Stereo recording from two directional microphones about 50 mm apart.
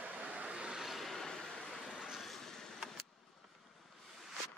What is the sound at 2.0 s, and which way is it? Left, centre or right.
Vehicle, centre.